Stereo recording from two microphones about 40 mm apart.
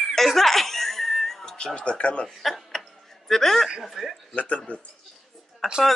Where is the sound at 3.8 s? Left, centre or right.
Centre.